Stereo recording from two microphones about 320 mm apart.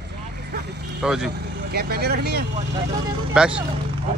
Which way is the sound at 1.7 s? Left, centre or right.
Right.